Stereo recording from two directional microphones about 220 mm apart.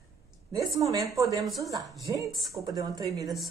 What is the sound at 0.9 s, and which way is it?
A woman's voice, 15° right (ahead or behind).